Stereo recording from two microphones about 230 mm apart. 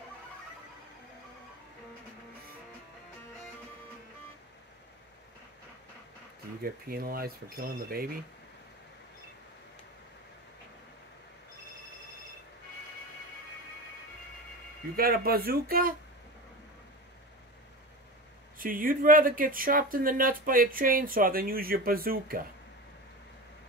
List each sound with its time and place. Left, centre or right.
6.6 s speech: right
15.0 s speech: right
18.6 s speech: right